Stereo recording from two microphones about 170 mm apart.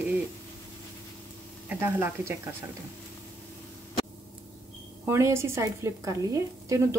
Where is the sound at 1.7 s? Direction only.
10° right (ahead or behind).